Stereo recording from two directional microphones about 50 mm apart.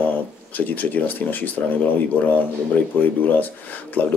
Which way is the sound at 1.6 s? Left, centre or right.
Left.